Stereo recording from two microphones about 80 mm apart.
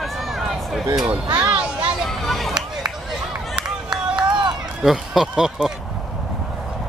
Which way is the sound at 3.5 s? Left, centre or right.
Centre.